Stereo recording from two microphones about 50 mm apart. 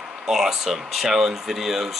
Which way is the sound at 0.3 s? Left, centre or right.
Centre.